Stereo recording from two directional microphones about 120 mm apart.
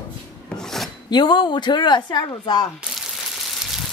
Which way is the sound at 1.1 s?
40° left (ahead or behind).